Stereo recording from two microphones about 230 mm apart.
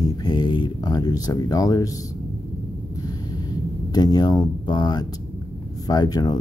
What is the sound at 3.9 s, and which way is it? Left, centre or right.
Speech, centre.